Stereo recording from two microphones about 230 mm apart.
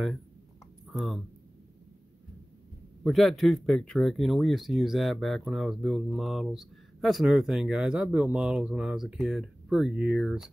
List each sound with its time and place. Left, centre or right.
0.8 s speech: centre
3.0 s speech: centre